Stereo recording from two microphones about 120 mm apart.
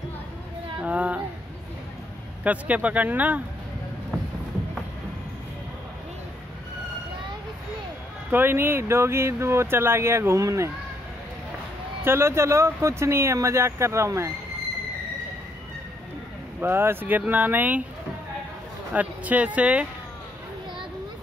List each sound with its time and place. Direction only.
0.7 s a sound: 10° right (ahead or behind)
2.4 s speech: 10° right (ahead or behind)
8.3 s speech: 15° right (ahead or behind)
12.0 s speech: 20° right (ahead or behind)
16.5 s speech: 20° right (ahead or behind)
18.9 s speech: 10° right (ahead or behind)